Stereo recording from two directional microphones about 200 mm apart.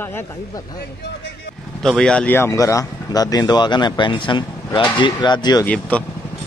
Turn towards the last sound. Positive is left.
turn(degrees=5)  # may be behind; listen again after turning